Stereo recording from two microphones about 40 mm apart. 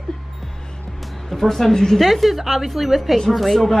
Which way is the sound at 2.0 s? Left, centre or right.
Centre.